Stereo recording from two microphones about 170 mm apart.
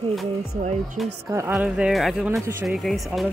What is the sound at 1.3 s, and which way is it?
Speech, 15° right (ahead or behind).